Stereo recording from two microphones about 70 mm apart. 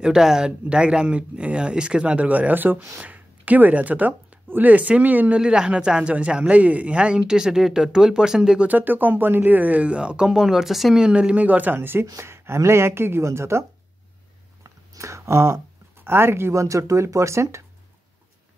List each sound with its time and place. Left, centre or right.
0.0 s speech: centre; by 5.4 s right
5.4 s speech: centre
11.1 s speech: centre; by 13.7 s right
14.6 s a sound: right
16.0 s speech: right